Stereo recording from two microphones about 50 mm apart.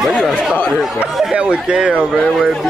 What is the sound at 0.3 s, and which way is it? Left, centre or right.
Speech, centre.